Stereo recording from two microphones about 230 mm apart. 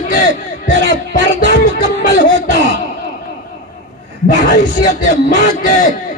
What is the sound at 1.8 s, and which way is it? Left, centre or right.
Speech, left.